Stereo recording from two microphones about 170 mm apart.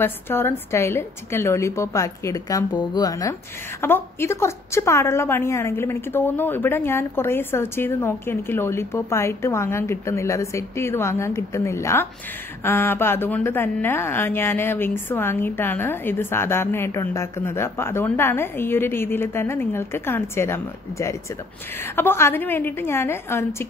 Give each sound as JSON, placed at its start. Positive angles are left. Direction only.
{"t": 0.0, "sound": "a woman's voice", "side_deg": 15}